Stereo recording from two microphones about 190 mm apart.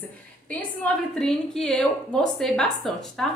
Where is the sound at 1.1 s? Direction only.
5° left (ahead or behind).